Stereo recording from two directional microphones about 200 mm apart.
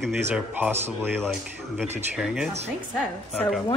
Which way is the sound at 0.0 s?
10° right (ahead or behind).